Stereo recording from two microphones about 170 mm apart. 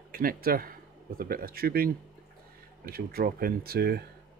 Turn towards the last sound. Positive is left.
turn(degrees=-65)  # may be behind; listen again after turning